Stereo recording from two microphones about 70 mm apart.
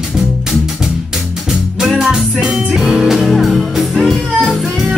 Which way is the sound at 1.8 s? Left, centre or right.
Centre.